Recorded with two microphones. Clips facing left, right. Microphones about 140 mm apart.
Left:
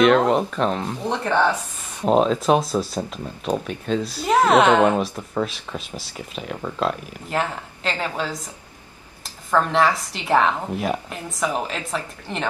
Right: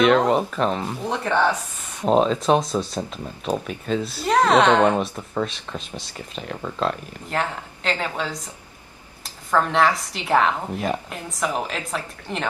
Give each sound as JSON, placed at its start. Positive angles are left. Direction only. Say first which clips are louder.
{"t": 0.0, "sound": "speech", "louder": "left 1 dB", "side_deg": 0}
{"t": 9.5, "sound": "speech", "louder": "even", "side_deg": 0}